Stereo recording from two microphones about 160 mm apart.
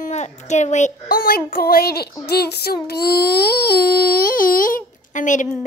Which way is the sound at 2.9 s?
75° left (ahead or behind).